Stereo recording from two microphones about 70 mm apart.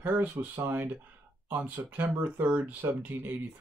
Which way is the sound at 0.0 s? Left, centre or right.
Right.